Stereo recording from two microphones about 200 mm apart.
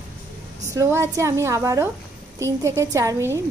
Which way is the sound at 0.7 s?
15° right (ahead or behind).